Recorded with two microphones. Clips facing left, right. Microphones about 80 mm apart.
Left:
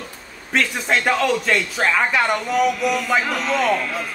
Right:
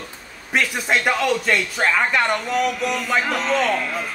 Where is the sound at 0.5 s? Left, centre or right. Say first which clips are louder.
Even; centre.